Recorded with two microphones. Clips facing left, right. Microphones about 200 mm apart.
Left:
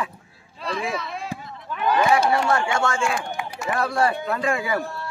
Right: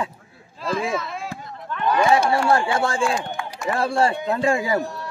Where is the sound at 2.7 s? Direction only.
35° right (ahead or behind).